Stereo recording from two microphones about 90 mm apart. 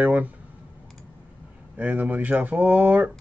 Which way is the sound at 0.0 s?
20° right (ahead or behind).